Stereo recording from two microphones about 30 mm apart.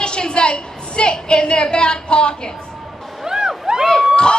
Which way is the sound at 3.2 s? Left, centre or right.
Centre.